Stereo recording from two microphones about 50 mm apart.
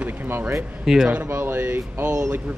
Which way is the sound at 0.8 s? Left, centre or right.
Centre.